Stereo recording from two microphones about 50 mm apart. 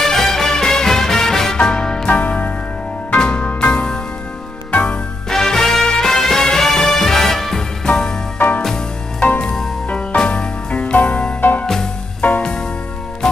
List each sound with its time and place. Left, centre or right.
0.0 s music: centre
2.0 s music: left
3.1 s music: centre
5.3 s music: centre
7.8 s music: centre
8.4 s music: left
9.4 s music: centre
9.8 s music: centre
11.6 s music: centre
12.2 s music: left